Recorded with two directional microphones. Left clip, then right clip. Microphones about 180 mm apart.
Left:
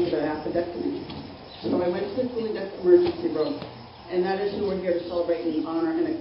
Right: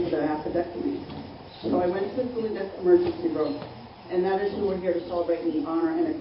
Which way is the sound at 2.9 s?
Centre (ahead or behind).